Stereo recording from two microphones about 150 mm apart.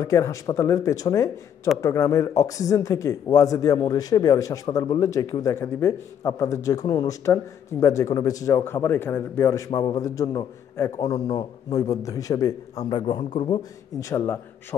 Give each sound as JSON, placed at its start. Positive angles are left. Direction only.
{"t": 0.0, "sound": "speech", "side_deg": 20}
{"t": 13.2, "sound": "a man's voice", "side_deg": 50}
{"t": 13.5, "sound": "speech", "side_deg": 25}